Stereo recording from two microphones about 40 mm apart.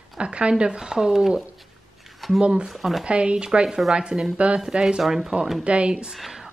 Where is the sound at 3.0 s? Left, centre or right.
Right.